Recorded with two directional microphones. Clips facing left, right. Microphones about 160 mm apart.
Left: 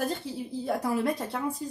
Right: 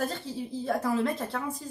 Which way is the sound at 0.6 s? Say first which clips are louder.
Even; 15° left (ahead or behind).